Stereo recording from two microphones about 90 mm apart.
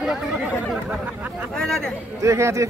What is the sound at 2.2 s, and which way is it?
Speech, 35° right (ahead or behind).